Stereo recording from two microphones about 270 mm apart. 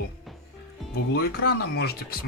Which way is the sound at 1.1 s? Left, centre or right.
Left.